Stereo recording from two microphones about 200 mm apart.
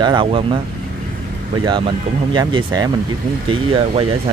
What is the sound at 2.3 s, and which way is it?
Speech, 20° right (ahead or behind).